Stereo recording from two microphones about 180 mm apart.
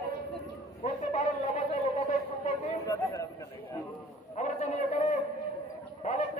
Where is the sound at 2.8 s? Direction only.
20° left (ahead or behind).